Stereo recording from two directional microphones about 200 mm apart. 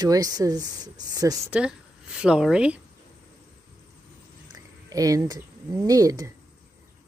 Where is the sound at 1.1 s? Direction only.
20° right (ahead or behind).